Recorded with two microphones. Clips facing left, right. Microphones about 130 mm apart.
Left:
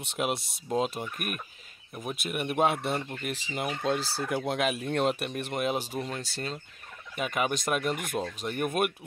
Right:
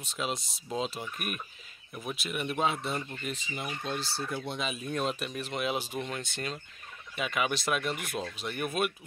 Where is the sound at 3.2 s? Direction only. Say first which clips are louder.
Left 4 dB; 80° left.